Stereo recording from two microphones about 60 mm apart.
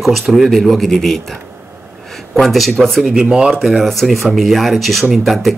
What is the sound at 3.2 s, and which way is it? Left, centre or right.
Speech, centre.